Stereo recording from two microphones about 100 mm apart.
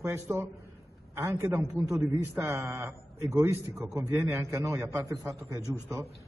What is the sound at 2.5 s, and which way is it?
A man's voice, 30° right (ahead or behind).